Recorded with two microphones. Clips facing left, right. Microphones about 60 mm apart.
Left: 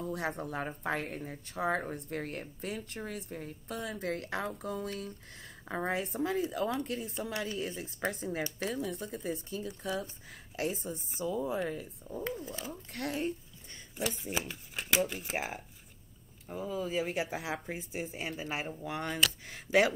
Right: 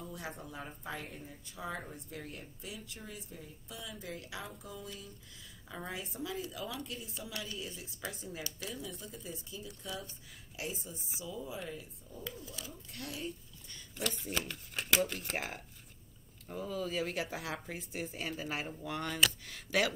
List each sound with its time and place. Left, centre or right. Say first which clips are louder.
0.0 s speech: left 9 dB; left
9.7 s speech: left 7 dB; left
10.3 s a woman's voice: left 7 dB; left
12.9 s speech: left 8 dB; left
13.9 s speech: left 2 dB; centre
19.1 s speech: right 2 dB; centre